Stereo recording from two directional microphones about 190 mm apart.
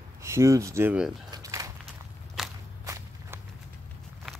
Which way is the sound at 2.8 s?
15° right (ahead or behind).